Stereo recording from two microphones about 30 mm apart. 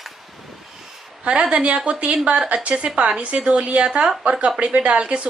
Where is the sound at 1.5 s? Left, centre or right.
Right.